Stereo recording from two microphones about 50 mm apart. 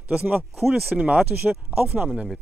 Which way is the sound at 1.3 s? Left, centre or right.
Centre.